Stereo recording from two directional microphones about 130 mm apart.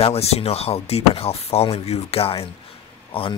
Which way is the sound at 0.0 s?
50° left (ahead or behind).